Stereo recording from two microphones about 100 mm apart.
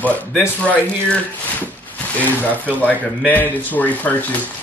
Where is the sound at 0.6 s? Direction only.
15° left (ahead or behind).